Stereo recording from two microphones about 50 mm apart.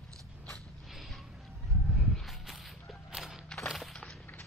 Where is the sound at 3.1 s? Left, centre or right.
Centre.